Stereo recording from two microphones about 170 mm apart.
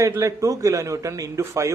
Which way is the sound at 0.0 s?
20° right (ahead or behind).